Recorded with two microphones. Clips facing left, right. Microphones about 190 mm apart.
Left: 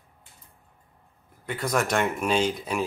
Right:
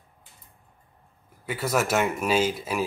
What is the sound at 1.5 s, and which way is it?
Speech, 5° right (ahead or behind).